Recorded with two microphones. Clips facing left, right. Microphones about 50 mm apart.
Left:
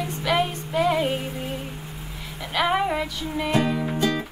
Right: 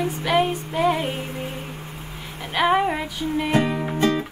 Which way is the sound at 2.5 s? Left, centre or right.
Right.